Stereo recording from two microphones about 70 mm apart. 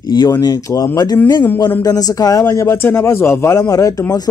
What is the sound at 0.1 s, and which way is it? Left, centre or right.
Speech, left.